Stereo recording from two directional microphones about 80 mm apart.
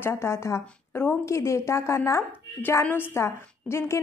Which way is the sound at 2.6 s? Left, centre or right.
Left.